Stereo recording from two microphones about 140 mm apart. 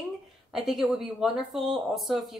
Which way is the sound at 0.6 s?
5° right (ahead or behind).